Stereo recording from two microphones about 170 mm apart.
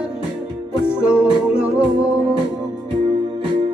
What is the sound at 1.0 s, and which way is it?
Music, 5° right (ahead or behind).